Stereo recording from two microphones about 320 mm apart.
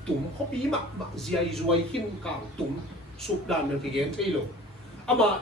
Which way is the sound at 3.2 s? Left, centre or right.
Centre.